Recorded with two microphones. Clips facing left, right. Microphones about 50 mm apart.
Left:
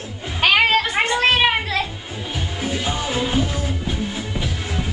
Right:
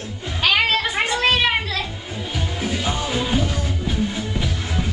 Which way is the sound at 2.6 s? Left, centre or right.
Centre.